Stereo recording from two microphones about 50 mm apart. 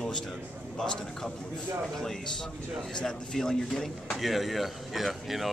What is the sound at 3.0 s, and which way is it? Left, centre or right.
Speech, centre.